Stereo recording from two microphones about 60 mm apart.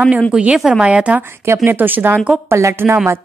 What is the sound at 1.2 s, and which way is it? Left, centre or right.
Speech, right.